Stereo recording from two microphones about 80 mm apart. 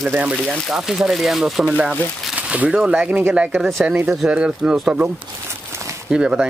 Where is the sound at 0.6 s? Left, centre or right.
Centre.